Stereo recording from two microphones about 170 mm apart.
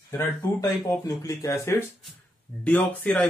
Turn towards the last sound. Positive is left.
turn(degrees=5)  # may be behind; listen again after turning